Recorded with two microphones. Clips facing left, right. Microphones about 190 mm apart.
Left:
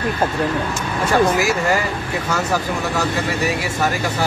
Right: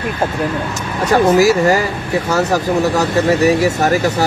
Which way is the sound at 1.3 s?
40° right (ahead or behind).